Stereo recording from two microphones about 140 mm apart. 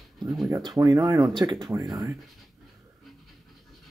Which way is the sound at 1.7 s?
25° right (ahead or behind).